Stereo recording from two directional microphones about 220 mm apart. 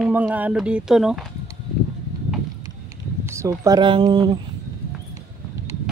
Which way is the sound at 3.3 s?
15° right (ahead or behind).